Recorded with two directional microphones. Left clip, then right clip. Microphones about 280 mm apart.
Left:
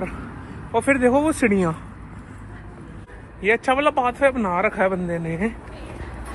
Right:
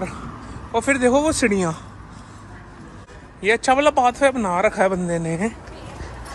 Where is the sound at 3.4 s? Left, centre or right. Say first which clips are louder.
Right 2 dB; centre.